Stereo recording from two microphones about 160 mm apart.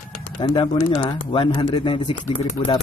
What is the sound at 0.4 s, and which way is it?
Speech, 30° left (ahead or behind).